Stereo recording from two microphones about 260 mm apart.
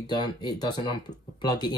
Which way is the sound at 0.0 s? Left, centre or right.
Centre.